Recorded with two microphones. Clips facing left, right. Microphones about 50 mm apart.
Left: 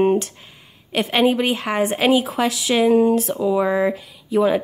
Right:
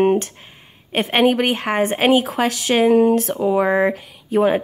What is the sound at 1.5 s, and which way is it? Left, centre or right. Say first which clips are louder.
A woman's voice: right 1 dB; right.